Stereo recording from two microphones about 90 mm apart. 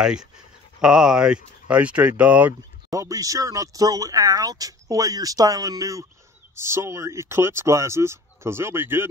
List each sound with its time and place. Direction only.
0.7 s speech: 5° right (ahead or behind)
2.9 s speech: 40° right (ahead or behind)